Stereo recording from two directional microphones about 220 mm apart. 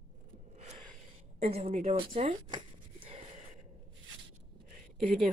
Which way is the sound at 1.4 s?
30° right (ahead or behind).